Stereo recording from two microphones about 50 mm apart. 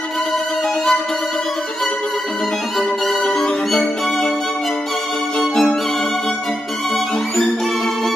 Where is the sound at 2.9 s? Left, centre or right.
Centre.